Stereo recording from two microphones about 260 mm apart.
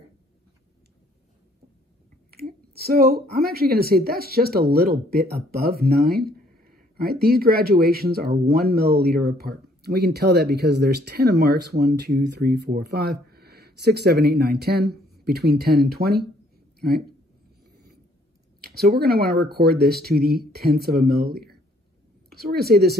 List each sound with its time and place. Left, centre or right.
2.3 s a woman's voice: right
18.6 s a woman's voice: right